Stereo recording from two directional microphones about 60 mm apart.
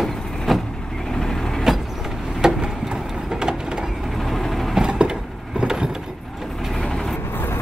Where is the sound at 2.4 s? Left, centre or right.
Centre.